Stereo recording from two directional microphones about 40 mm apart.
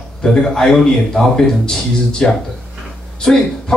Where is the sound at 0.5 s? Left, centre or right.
Centre.